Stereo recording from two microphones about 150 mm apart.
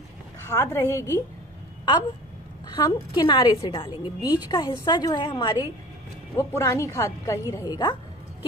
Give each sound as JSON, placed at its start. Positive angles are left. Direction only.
{"t": 0.5, "sound": "a woman's voice", "side_deg": 20}
{"t": 2.7, "sound": "a woman's voice", "side_deg": 30}
{"t": 6.3, "sound": "a woman's voice", "side_deg": 20}